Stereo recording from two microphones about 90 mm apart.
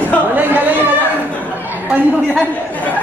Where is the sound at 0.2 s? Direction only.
20° right (ahead or behind).